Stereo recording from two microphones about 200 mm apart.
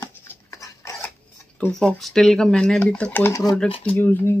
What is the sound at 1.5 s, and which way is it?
Speech, 5° left (ahead or behind).